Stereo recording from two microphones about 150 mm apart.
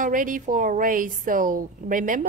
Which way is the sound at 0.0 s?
65° right (ahead or behind).